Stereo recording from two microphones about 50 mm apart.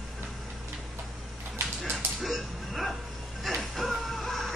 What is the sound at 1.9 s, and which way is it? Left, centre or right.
Music, centre.